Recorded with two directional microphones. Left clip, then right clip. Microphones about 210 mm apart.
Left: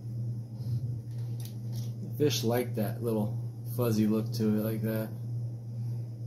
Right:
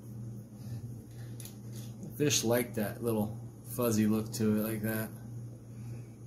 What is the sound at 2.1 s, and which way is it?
Speech, 20° right (ahead or behind).